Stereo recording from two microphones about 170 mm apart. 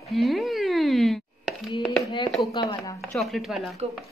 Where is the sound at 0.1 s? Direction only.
Centre (ahead or behind).